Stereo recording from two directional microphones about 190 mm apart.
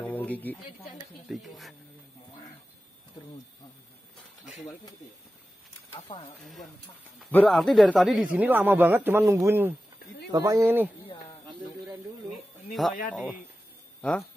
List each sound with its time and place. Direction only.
0.0 s a sound: 10° left (ahead or behind)
1.3 s speech: centre (ahead or behind)
4.5 s speech: centre (ahead or behind)
6.1 s speech: 25° left (ahead or behind)
7.2 s speech: 5° left (ahead or behind); by 10.9 s 10° right (ahead or behind)
12.8 s speech: centre (ahead or behind)